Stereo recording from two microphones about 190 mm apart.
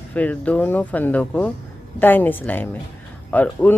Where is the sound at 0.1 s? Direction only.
10° left (ahead or behind).